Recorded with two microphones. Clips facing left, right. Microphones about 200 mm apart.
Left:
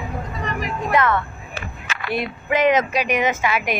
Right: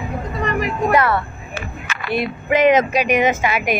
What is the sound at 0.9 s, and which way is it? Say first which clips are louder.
Vehicle: even; 35° right (ahead or behind).